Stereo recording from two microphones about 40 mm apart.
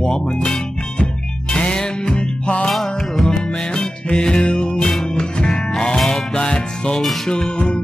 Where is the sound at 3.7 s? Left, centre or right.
Centre.